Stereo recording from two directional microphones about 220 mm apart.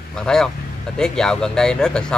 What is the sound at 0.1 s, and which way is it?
Speech, 5° left (ahead or behind).